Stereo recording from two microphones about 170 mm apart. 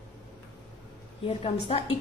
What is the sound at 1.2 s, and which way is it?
Speech, 35° left (ahead or behind).